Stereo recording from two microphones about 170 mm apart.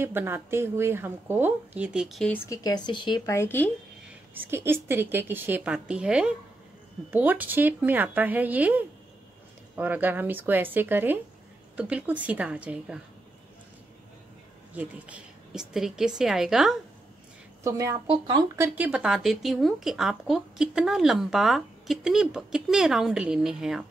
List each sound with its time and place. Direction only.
0.0 s speech: 15° right (ahead or behind)
2.3 s speech: 15° left (ahead or behind)
3.3 s speech: 15° left (ahead or behind)
4.3 s speech: 15° right (ahead or behind)
14.7 s speech: 10° right (ahead or behind)
17.6 s speech: 15° right (ahead or behind)
18.0 s speech: 30° right (ahead or behind)
18.6 s speech: 10° right (ahead or behind)